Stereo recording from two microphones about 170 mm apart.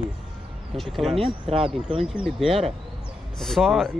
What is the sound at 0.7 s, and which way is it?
Speech, centre (ahead or behind).